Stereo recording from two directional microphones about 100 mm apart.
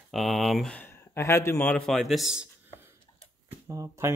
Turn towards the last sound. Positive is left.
turn(degrees=-30)  # may be behind; listen again after turning